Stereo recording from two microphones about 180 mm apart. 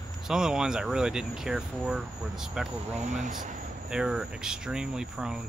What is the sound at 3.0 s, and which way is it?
Speech, 40° right (ahead or behind).